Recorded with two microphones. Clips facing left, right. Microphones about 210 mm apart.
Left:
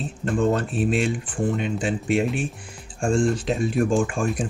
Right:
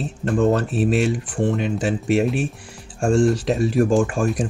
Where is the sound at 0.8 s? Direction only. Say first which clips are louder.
Right 3 dB; 40° right (ahead or behind).